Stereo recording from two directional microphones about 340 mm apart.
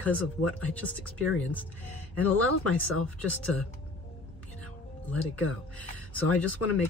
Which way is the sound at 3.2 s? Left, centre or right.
Centre.